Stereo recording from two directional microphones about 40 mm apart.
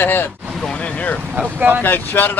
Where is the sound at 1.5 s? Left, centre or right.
Right.